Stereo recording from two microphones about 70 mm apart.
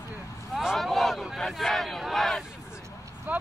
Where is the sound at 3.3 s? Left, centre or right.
Right.